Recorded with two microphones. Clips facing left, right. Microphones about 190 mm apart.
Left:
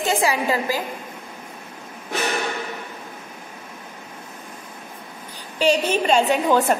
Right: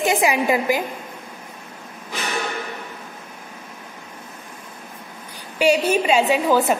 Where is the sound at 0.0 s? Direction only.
15° right (ahead or behind).